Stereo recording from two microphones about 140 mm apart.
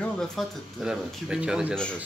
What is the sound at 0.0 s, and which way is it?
Speech, centre (ahead or behind).